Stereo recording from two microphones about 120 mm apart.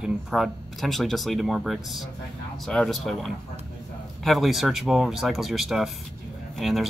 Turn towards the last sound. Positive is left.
turn(degrees=0)  # may be behind; listen again after turning